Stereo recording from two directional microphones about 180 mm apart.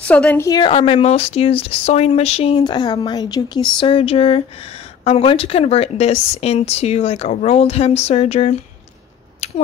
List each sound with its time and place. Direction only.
0.0 s a woman's voice: 5° left (ahead or behind)
0.5 s speech: 25° left (ahead or behind)